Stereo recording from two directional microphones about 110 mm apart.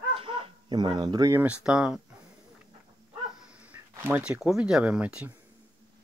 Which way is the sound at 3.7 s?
15° right (ahead or behind).